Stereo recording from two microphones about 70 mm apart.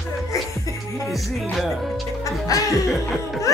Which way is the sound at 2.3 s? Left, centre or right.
Left.